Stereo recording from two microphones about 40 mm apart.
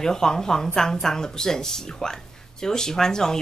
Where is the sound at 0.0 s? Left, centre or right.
Centre.